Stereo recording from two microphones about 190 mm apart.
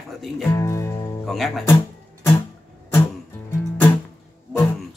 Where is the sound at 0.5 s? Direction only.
15° left (ahead or behind).